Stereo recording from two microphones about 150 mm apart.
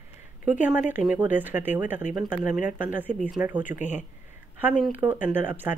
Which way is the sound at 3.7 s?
55° left (ahead or behind).